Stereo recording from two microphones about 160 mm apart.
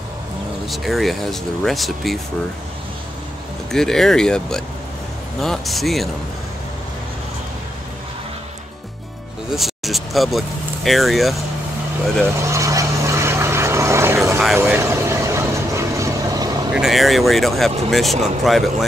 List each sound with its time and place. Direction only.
0.7 s speech: centre (ahead or behind)
3.7 s speech: 5° left (ahead or behind)
9.6 s speech: centre (ahead or behind)
12.4 s vehicle: 20° right (ahead or behind)
16.7 s speech: centre (ahead or behind)